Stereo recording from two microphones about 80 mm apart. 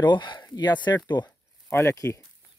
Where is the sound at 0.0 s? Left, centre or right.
Left.